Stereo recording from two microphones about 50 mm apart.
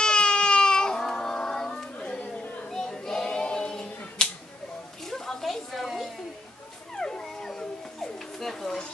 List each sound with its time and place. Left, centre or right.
0.0 s baby cry: centre
1.7 s carnatic music: left
2.7 s child singing: centre
5.0 s a sound: centre
7.0 s dog: centre